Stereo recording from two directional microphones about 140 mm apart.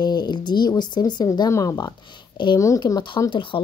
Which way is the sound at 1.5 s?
20° left (ahead or behind).